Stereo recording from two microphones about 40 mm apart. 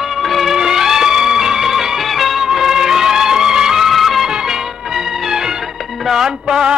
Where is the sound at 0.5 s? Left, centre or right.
Centre.